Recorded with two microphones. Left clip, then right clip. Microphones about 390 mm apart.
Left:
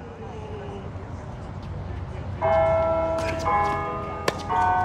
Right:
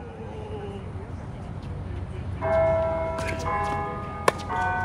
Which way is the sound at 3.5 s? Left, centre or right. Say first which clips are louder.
Left 5 dB; left.